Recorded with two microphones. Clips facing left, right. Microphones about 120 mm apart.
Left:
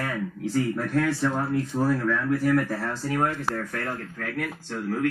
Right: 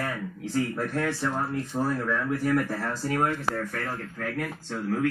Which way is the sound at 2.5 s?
5° right (ahead or behind).